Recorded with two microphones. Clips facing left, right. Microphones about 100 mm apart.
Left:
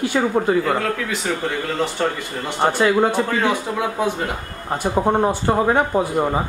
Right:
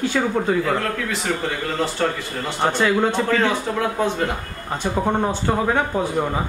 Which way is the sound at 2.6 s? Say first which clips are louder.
Left 2 dB; 10° left (ahead or behind).